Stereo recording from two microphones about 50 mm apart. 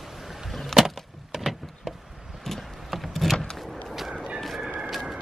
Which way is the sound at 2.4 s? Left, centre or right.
Centre.